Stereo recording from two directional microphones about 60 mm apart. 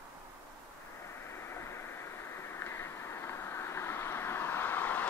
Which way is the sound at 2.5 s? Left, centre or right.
Left.